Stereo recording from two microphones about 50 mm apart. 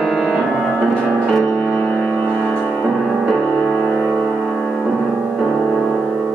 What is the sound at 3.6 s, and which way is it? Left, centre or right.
Music, centre.